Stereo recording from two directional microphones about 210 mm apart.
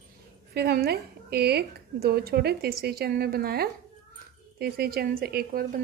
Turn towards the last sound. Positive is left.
turn(degrees=-45)  # may be behind; listen again after turning